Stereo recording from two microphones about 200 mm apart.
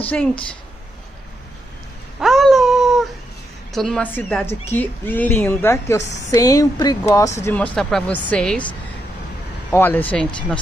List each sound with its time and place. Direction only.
0.1 s speech: 5° left (ahead or behind)
2.1 s a sound: centre (ahead or behind)
3.7 s speech: centre (ahead or behind)
9.7 s speech: 10° left (ahead or behind)